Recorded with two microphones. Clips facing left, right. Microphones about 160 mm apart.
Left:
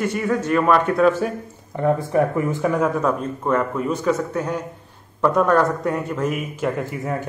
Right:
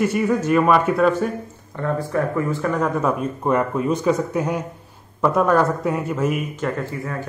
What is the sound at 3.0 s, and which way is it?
A man's voice, 15° right (ahead or behind).